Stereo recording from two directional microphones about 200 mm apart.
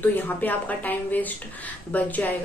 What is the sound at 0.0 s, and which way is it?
A woman's voice, 10° left (ahead or behind).